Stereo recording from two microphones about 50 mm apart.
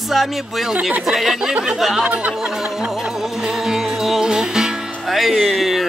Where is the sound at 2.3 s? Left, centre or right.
Centre.